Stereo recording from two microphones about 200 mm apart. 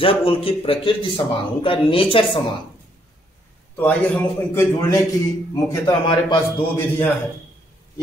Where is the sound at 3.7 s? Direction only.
10° left (ahead or behind).